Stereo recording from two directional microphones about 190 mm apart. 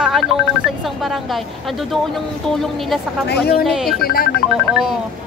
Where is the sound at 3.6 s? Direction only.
Centre (ahead or behind).